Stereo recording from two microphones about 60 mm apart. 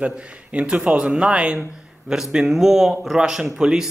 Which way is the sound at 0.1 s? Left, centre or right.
Centre.